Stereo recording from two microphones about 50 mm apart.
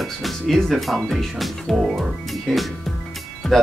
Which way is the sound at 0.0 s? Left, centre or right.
Centre.